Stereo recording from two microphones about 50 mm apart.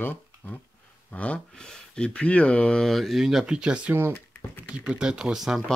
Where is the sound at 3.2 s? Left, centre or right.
Centre.